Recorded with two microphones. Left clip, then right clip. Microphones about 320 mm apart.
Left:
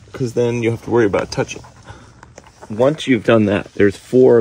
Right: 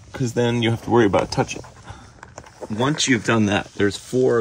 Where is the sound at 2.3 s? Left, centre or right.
Centre.